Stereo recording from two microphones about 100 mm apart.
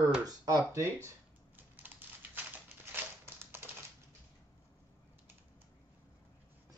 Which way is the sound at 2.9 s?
20° right (ahead or behind).